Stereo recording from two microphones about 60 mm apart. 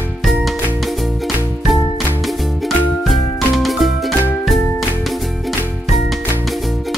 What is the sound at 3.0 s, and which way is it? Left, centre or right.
Music, centre.